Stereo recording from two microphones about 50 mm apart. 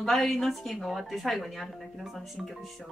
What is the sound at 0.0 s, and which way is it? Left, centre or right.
A woman's voice, centre.